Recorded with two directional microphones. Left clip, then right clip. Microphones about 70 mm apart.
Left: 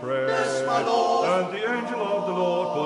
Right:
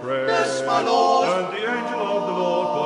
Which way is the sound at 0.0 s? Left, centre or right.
Right.